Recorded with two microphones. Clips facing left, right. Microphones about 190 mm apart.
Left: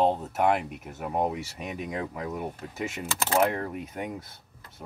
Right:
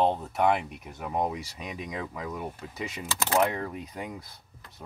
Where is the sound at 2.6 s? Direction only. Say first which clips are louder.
Left 2 dB; 50° left (ahead or behind).